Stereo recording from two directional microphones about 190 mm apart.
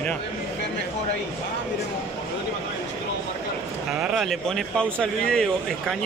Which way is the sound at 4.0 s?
Centre (ahead or behind).